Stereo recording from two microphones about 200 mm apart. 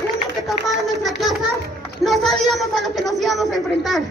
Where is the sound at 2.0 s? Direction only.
Centre (ahead or behind).